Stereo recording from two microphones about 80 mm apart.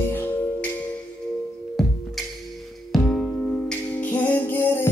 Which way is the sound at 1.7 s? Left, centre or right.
Centre.